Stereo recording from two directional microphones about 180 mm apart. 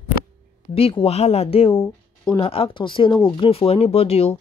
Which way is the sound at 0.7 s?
30° left (ahead or behind).